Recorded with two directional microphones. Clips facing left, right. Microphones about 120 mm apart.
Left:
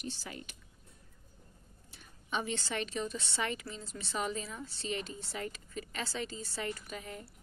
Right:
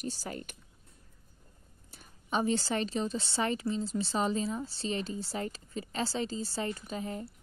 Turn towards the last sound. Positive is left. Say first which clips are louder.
# right 7 dB
turn(degrees=-30)  # may be behind; listen again after turning